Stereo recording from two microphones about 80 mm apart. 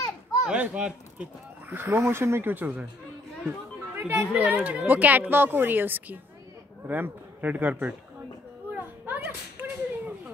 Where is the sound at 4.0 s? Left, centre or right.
Right.